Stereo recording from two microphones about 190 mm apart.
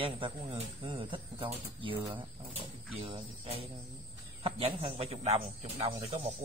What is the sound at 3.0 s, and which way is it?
Speech, 30° right (ahead or behind).